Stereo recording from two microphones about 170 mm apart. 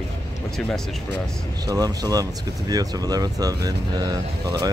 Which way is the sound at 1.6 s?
20° right (ahead or behind).